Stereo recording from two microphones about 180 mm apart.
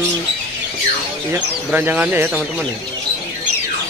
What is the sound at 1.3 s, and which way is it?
A man's voice, 10° right (ahead or behind).